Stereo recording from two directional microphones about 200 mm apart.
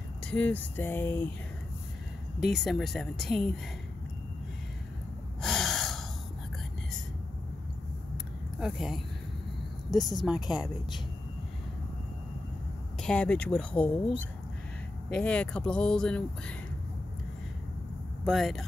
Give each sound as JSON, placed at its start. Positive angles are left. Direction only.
{"t": 0.3, "sound": "a sound", "side_deg": 10}
{"t": 2.4, "sound": "speech", "side_deg": 0}
{"t": 5.4, "sound": "gasp", "side_deg": 0}
{"t": 8.5, "sound": "speech", "side_deg": 0}
{"t": 9.8, "sound": "a woman's voice", "side_deg": 20}
{"t": 10.1, "sound": "speech", "side_deg": 0}
{"t": 13.0, "sound": "speech", "side_deg": 5}
{"t": 18.2, "sound": "speech", "side_deg": 0}